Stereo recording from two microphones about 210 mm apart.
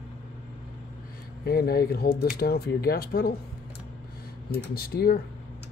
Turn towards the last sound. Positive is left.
turn(degrees=45)  # may be behind; listen again after turning